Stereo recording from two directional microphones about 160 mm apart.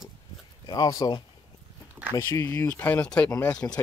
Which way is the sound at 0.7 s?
25° left (ahead or behind).